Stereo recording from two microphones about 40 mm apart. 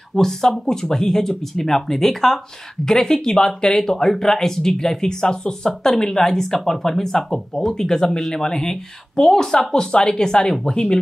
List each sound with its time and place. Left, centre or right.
0.1 s speech: centre